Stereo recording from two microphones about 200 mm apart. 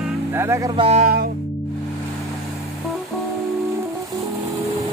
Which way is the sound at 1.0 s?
45° right (ahead or behind).